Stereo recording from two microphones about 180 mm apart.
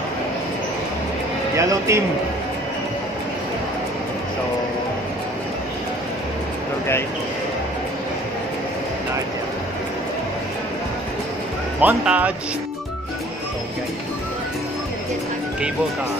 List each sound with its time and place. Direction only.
1.6 s speech: 15° right (ahead or behind)
11.8 s speech: 10° right (ahead or behind)